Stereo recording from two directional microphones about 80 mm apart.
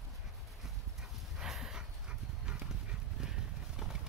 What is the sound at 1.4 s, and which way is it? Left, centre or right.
Dog, centre.